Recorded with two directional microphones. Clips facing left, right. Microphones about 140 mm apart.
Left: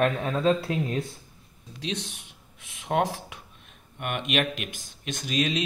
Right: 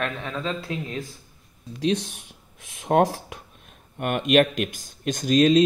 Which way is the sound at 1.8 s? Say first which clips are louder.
Right 9 dB; 45° right (ahead or behind).